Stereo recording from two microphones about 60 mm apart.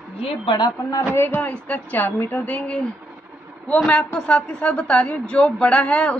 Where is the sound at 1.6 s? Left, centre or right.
Left.